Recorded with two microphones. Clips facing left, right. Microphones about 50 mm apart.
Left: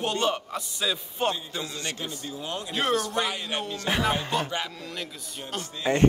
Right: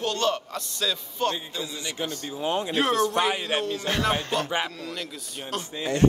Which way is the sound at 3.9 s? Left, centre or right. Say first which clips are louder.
Left 2 dB; centre.